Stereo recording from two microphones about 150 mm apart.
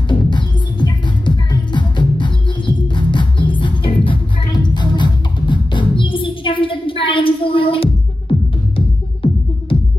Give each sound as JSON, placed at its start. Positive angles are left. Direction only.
{"t": 0.1, "sound": "music", "side_deg": 30}